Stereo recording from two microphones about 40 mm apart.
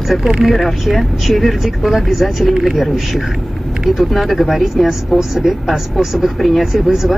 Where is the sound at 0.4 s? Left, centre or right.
Centre.